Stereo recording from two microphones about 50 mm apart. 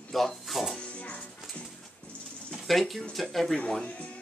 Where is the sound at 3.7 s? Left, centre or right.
Centre.